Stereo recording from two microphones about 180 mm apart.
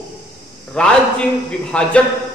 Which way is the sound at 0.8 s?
5° left (ahead or behind).